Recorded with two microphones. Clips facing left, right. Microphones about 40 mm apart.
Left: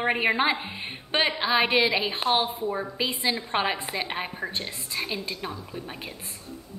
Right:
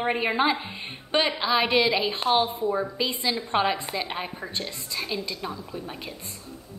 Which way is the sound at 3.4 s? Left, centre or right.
Left.